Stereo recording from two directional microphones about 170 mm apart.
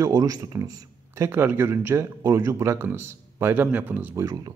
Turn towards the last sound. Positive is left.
turn(degrees=-20)  # may be behind; listen again after turning